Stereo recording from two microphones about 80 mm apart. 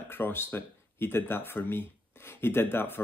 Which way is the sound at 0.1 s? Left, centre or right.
Left.